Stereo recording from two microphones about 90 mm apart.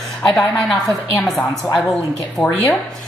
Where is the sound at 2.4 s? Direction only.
20° left (ahead or behind).